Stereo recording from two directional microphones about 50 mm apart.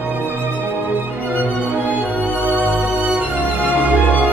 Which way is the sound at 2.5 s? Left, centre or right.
Right.